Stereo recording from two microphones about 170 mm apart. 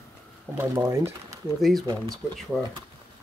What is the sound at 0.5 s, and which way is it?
Speech, 15° right (ahead or behind).